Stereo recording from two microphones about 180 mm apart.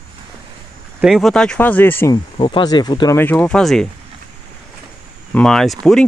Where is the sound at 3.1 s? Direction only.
10° left (ahead or behind).